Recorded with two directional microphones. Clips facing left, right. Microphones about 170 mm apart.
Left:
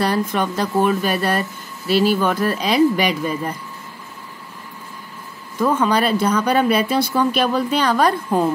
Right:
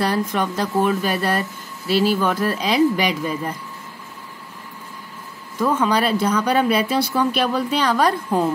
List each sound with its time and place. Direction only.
0.0 s speech: 65° left (ahead or behind)
5.6 s speech: 55° left (ahead or behind)